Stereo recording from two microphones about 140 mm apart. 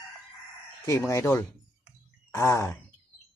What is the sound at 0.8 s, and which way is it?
Speech, 20° left (ahead or behind).